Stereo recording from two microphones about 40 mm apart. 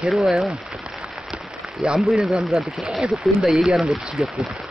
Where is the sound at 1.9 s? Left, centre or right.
Centre.